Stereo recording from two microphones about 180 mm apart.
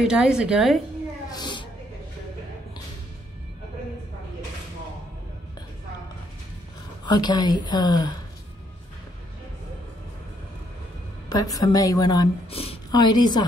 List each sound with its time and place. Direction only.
0.0 s a woman's voice: 5° right (ahead or behind)
1.3 s a sound: 25° left (ahead or behind)
7.1 s a woman's voice: 25° left (ahead or behind)
11.2 s a woman's voice: 20° left (ahead or behind)